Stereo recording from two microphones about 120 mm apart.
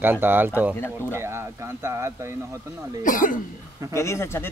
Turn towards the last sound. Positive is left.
turn(degrees=20)  # may be behind; listen again after turning